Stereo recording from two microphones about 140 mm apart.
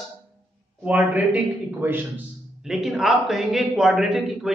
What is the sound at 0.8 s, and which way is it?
A man's voice, 10° right (ahead or behind).